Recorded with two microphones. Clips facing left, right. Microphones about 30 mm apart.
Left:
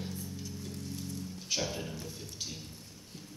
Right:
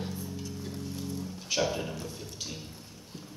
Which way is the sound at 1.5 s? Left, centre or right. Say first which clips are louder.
Right 6 dB; centre.